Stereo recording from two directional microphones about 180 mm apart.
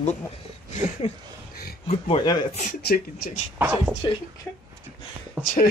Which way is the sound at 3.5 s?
10° right (ahead or behind).